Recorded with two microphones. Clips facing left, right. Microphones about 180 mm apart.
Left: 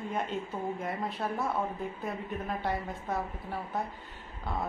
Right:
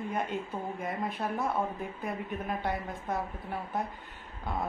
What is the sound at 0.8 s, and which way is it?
Speech, centre (ahead or behind).